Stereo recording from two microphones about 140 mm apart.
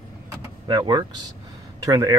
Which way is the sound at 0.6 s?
30° right (ahead or behind).